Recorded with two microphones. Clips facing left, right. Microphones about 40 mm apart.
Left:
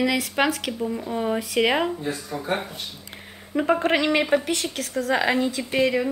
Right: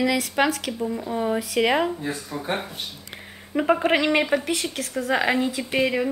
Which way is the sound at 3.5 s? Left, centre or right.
Centre.